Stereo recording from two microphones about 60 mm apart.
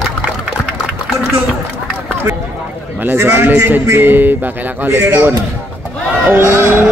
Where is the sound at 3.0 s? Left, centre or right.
Right.